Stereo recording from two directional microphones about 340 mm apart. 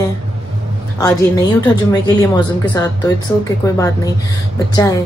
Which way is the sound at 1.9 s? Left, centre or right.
Centre.